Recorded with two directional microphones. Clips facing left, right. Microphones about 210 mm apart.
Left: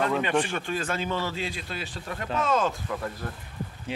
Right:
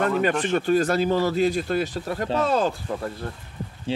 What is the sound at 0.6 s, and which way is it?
Speech, 40° right (ahead or behind).